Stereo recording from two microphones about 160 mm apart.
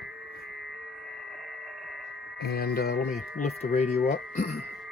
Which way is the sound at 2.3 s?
75° left (ahead or behind).